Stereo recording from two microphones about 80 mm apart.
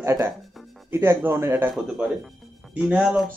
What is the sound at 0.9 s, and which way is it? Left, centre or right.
Speech, right.